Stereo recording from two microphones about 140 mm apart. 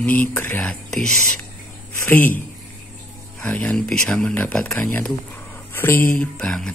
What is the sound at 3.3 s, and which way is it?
Speech, 10° left (ahead or behind).